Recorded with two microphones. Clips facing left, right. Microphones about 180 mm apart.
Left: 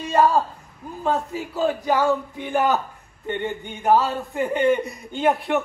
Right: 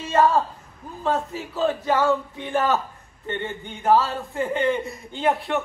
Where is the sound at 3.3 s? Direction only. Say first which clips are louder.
Left 3 dB; 15° left (ahead or behind).